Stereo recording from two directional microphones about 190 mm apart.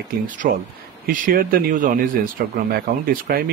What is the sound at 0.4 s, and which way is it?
Speech, 50° right (ahead or behind).